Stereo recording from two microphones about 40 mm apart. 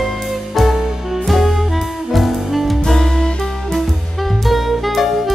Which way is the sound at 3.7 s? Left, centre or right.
Centre.